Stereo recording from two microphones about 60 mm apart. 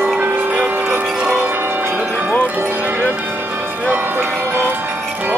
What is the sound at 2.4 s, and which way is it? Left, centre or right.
Music, right.